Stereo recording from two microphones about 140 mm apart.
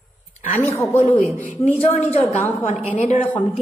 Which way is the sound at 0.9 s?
55° left (ahead or behind).